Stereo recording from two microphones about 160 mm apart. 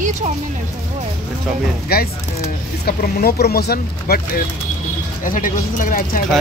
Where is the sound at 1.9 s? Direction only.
75° left (ahead or behind).